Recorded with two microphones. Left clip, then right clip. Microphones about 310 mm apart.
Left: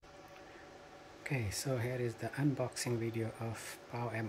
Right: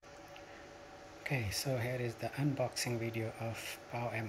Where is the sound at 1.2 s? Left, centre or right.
Centre.